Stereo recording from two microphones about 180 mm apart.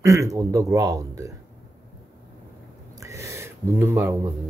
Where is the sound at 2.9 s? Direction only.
15° right (ahead or behind).